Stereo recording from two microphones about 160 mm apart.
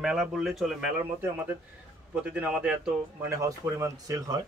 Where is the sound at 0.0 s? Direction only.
5° right (ahead or behind).